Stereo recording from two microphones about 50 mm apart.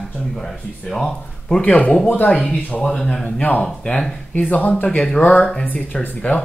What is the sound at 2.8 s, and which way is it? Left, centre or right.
Speech, left.